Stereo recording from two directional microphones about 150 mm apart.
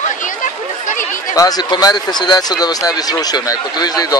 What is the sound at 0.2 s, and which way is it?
Chatter, 60° left (ahead or behind).